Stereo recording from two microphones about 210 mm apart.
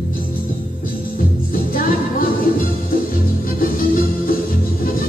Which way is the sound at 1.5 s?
45° left (ahead or behind).